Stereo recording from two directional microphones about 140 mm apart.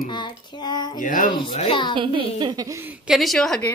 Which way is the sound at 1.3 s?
35° left (ahead or behind).